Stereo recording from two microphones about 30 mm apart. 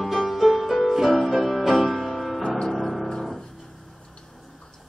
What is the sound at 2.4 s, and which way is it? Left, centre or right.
Music, left.